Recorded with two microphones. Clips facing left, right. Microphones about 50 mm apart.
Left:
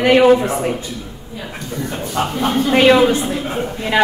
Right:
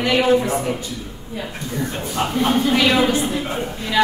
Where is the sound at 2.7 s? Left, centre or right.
Left.